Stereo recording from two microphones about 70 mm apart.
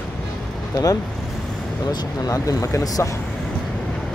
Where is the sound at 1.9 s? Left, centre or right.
Left.